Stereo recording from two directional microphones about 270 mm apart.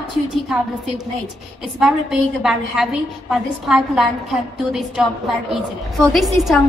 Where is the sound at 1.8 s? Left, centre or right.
Centre.